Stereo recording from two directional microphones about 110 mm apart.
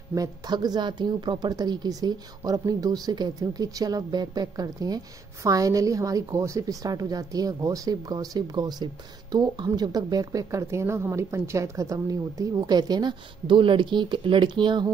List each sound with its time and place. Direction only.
0.1 s a woman's voice: 35° right (ahead or behind)